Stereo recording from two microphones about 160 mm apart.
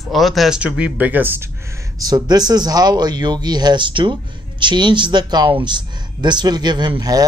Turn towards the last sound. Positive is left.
turn(degrees=-25)  # may be behind; listen again after turning